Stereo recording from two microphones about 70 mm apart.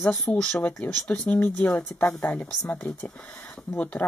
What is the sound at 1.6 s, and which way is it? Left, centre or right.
Speech, centre.